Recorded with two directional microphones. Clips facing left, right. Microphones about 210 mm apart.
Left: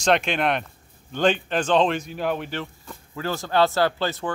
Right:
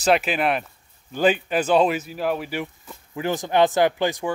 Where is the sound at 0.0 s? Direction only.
5° right (ahead or behind).